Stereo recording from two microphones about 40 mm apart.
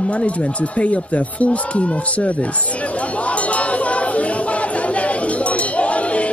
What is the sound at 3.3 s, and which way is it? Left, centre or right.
Music, left.